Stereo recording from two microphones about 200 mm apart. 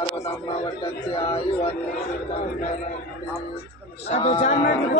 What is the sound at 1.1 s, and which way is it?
Speech, 25° left (ahead or behind).